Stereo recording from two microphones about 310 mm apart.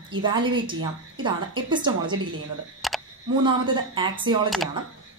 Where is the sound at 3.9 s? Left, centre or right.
Centre.